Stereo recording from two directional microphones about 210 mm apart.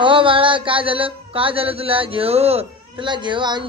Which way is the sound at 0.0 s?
25° right (ahead or behind).